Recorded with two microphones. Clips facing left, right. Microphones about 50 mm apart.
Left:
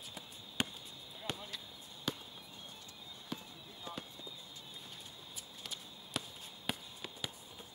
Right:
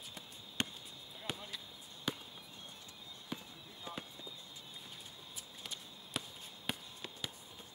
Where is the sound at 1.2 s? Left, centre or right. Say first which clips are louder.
Left 1 dB; centre.